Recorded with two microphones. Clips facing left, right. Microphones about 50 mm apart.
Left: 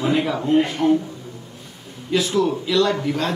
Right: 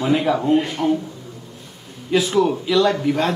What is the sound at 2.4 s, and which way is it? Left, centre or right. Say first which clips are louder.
Speech: right 2 dB; centre.